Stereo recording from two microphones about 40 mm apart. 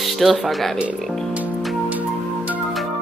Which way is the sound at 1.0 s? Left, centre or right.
Centre.